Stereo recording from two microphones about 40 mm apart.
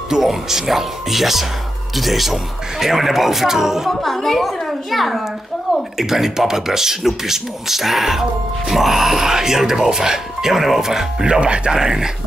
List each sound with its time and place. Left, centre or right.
0.1 s speech: centre
4.0 s a child's voice: centre
11.2 s speech: right
11.7 s speech: centre